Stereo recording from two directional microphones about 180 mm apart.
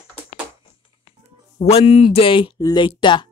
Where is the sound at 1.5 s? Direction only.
35° left (ahead or behind).